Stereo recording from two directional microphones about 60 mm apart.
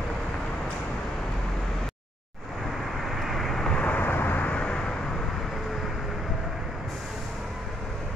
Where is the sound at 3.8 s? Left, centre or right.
Left; by 5.2 s centre.